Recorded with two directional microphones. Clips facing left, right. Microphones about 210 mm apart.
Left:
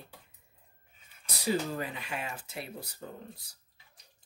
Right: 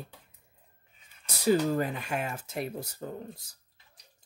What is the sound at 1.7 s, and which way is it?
Speech, 50° right (ahead or behind).